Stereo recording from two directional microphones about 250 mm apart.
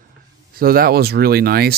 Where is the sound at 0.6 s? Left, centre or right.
Right.